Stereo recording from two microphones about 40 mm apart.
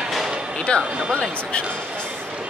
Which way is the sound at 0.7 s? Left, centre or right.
Left.